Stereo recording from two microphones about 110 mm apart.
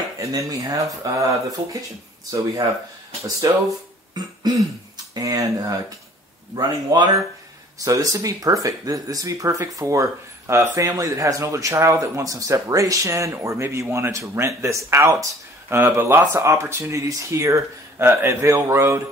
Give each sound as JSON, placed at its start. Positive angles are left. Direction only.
{"t": 0.2, "sound": "speech", "side_deg": -30}
{"t": 2.3, "sound": "a man's voice", "side_deg": -30}
{"t": 4.1, "sound": "throat clearing", "side_deg": -40}
{"t": 5.1, "sound": "a man's voice", "side_deg": -35}